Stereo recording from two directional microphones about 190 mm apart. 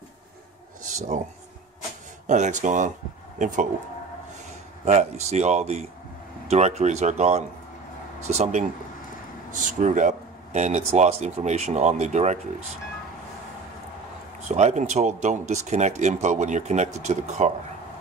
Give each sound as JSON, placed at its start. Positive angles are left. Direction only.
{"t": 0.9, "sound": "speech", "side_deg": -40}
{"t": 2.2, "sound": "speech", "side_deg": -40}
{"t": 4.8, "sound": "speech", "side_deg": -35}
{"t": 14.5, "sound": "speech", "side_deg": -35}